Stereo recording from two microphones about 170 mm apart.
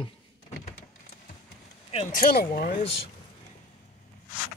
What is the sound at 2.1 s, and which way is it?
Speech, 55° left (ahead or behind).